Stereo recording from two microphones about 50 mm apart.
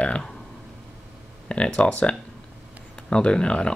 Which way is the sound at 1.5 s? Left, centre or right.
Left.